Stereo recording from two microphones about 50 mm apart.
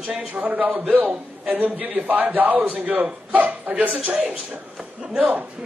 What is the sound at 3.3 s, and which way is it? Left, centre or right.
A man's voice, right.